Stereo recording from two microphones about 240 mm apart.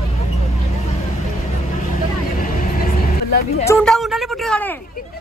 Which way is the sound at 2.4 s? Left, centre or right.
Left.